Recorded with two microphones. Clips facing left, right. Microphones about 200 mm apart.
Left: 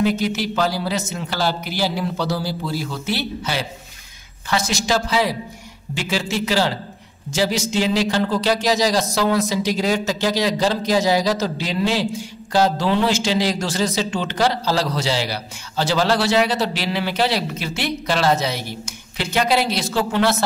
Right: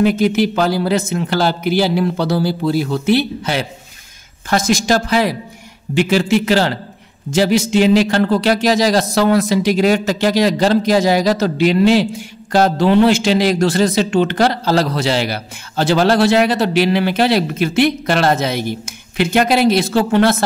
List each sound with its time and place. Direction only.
0.0 s a man's voice: 55° right (ahead or behind)